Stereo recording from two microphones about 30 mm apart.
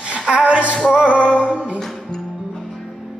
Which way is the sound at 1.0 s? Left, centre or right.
Right.